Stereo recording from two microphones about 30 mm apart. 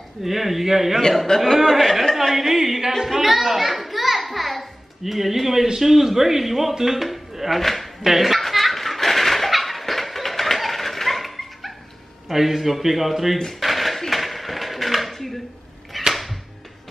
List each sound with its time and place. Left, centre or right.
0.2 s a man's voice: centre
1.4 s speech: centre
2.3 s a man's voice: centre
7.1 s dishes: centre
8.0 s a man's voice: centre
8.4 s a sound: centre
12.3 s a man's voice: centre
13.6 s a sound: centre
16.1 s music: centre